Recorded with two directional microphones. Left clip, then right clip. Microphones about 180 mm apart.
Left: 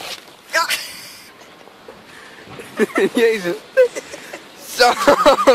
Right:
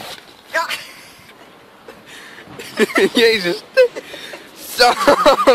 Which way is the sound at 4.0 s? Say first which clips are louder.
Even; centre (ahead or behind).